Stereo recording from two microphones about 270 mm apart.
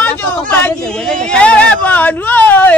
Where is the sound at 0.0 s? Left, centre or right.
Centre.